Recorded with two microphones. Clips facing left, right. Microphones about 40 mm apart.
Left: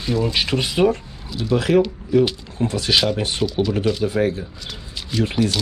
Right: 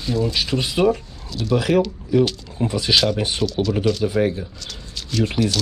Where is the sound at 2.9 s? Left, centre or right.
Centre.